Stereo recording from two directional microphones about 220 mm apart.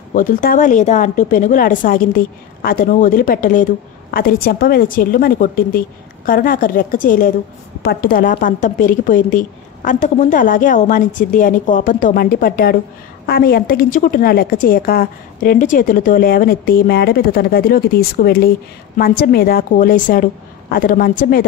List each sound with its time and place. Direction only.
0.1 s a woman's voice: 40° left (ahead or behind)